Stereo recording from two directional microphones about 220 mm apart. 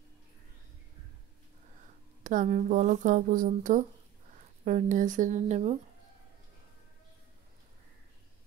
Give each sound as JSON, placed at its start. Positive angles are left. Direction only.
{"t": 2.2, "sound": "speech", "side_deg": -35}